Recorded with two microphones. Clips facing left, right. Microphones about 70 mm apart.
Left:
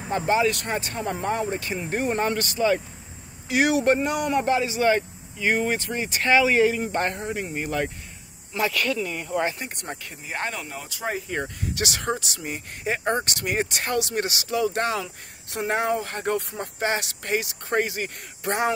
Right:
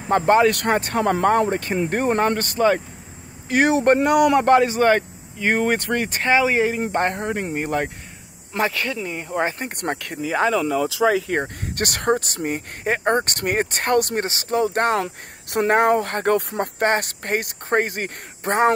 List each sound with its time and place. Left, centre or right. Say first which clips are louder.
0.3 s speech: right 6 dB; right
6.2 s speech: even; right
8.5 s speech: right 1 dB; right
9.6 s speech: right 8 dB; right
11.1 s speech: right 7 dB; right
11.3 s speech: right 4 dB; right
14.2 s speech: right 3 dB; right